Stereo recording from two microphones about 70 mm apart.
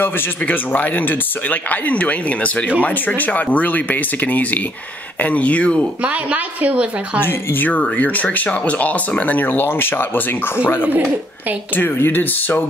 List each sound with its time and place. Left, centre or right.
0.0 s speech: left
6.0 s a woman's voice: right
7.2 s speech: left